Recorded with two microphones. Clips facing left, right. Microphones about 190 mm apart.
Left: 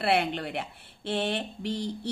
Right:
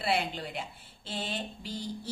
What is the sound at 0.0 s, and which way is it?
Speech, 65° left (ahead or behind).